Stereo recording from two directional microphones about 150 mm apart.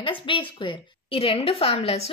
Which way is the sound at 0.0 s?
35° left (ahead or behind).